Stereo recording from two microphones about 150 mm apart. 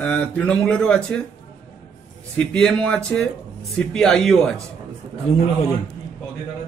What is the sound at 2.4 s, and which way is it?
Speech, 5° left (ahead or behind).